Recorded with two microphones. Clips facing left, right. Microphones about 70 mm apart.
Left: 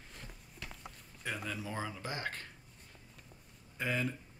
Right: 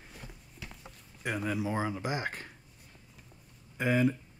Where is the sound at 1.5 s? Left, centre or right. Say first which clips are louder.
Right 8 dB; centre.